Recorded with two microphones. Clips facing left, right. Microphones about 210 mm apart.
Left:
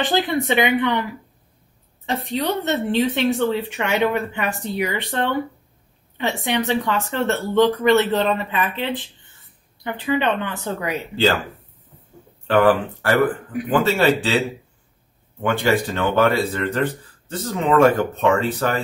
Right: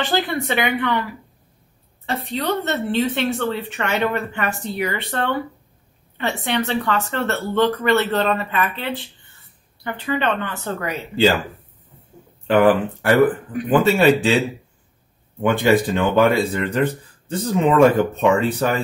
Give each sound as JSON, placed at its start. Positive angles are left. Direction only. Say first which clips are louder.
{"t": 0.0, "sound": "a woman's voice", "louder": "left 1 dB", "side_deg": 15}
{"t": 2.0, "sound": "a woman's voice", "louder": "even", "side_deg": 15}
{"t": 12.4, "sound": "speech", "louder": "right 1 dB", "side_deg": -15}
{"t": 15.4, "sound": "speech", "louder": "right 3 dB", "side_deg": -15}